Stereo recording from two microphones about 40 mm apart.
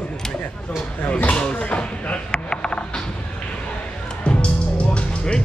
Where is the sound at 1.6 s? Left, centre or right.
Left.